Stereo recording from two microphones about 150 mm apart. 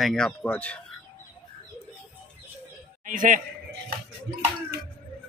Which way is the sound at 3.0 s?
60° right (ahead or behind).